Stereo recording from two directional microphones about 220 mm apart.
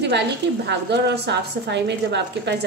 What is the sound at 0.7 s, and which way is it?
A woman's voice, 50° right (ahead or behind).